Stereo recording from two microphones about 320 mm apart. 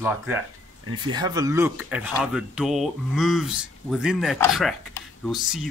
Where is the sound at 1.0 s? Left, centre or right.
Centre.